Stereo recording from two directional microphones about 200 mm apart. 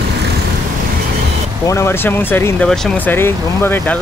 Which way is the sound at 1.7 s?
15° left (ahead or behind).